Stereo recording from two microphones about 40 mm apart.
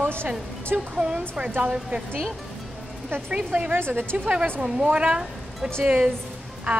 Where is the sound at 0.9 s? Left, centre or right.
Right.